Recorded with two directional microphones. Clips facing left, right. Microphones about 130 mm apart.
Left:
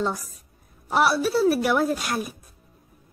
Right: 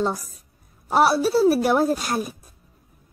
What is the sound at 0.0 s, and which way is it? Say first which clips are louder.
A woman's voice: right 2 dB; 25° right (ahead or behind).